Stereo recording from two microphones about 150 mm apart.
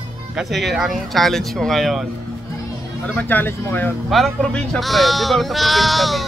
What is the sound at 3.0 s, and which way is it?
Speech, 10° left (ahead or behind).